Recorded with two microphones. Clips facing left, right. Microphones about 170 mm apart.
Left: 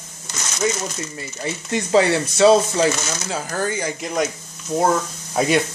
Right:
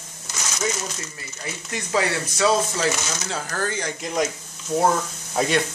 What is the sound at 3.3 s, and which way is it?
Speech, 15° left (ahead or behind).